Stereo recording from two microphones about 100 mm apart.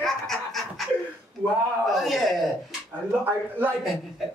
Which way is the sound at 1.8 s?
Centre (ahead or behind).